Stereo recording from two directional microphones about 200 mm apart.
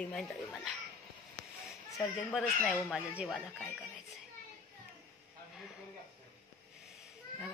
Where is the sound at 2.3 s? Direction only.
Centre (ahead or behind).